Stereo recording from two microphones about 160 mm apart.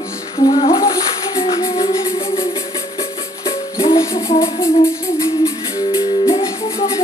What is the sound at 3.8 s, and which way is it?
Music, 35° left (ahead or behind).